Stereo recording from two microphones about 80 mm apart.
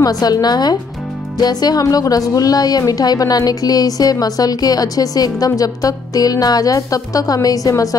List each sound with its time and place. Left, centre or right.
0.0 s a woman's voice: left